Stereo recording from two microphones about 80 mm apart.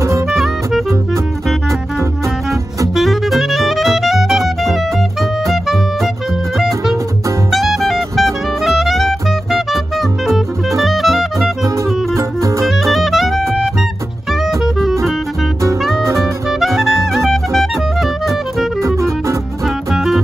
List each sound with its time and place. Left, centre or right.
0.3 s music: centre
3.0 s music: centre
7.5 s music: centre
10.8 s music: centre
12.2 s music: right
12.6 s music: centre
14.6 s music: centre
16.2 s music: centre
18.8 s music: right
19.9 s music: centre